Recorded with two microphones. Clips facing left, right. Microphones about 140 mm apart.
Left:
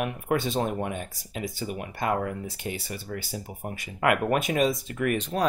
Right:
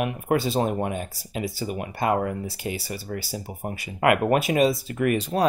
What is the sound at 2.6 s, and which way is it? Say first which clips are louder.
Speech: right 3 dB; 5° right (ahead or behind).